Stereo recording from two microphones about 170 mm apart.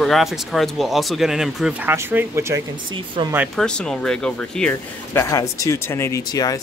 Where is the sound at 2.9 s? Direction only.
30° right (ahead or behind).